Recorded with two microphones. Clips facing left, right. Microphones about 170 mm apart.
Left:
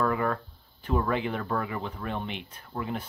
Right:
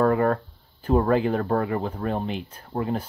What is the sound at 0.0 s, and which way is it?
Speech, 45° right (ahead or behind).